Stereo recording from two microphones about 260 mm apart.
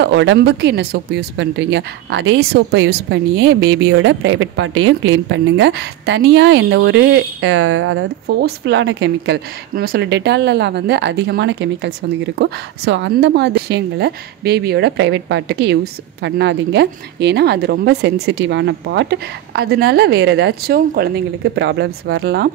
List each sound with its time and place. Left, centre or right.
0.0 s a woman's voice: right